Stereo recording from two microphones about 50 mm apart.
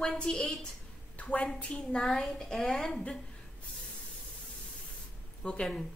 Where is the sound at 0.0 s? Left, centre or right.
Centre.